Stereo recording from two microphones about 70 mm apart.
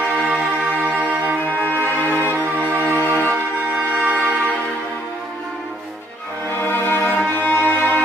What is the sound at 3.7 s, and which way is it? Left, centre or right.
Music, centre.